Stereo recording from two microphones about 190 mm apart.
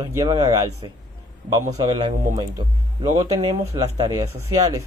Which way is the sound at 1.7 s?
25° right (ahead or behind).